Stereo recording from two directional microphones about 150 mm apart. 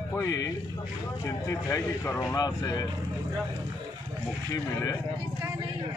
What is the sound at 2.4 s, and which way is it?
Speech, 25° left (ahead or behind).